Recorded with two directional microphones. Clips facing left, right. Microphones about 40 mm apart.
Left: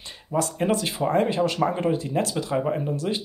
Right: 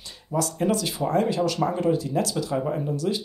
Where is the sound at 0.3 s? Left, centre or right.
Left.